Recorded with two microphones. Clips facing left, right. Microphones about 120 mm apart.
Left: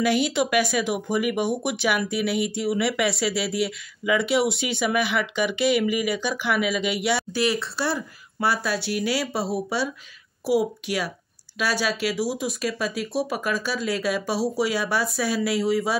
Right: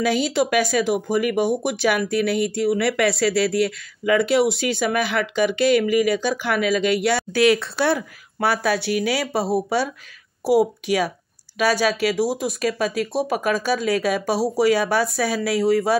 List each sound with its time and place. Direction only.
0.3 s speech: 40° right (ahead or behind)
5.6 s speech: 10° left (ahead or behind)
6.1 s speech: 45° right (ahead or behind)
7.3 s speech: 70° right (ahead or behind); by 16.0 s 45° right (ahead or behind)